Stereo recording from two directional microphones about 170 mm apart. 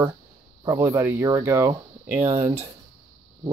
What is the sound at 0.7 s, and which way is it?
Speech, 20° right (ahead or behind).